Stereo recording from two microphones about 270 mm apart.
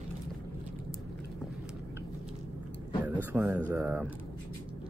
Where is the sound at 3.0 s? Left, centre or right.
Centre.